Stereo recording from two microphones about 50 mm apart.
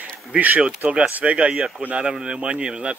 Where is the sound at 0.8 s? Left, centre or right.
Right.